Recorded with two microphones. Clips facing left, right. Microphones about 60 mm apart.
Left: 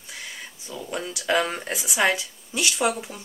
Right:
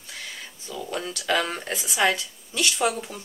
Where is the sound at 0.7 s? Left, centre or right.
Centre.